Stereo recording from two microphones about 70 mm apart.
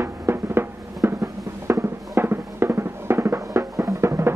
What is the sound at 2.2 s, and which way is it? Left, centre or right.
Music, right.